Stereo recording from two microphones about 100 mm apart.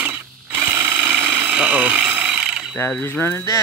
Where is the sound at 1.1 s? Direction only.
10° right (ahead or behind).